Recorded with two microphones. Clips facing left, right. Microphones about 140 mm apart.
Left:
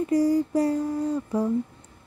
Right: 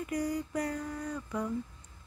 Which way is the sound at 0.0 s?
30° left (ahead or behind).